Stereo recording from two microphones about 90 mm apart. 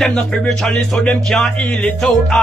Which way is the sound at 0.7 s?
10° left (ahead or behind).